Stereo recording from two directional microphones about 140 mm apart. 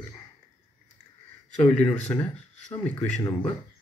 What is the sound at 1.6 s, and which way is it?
Speech, 10° left (ahead or behind).